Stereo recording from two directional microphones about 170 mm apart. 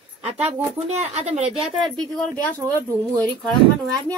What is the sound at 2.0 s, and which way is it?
Speech, 5° left (ahead or behind).